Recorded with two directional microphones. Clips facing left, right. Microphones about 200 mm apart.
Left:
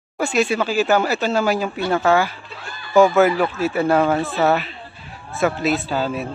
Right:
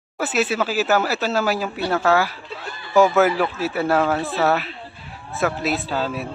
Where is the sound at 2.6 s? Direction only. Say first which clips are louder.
Right 2 dB; 25° right (ahead or behind).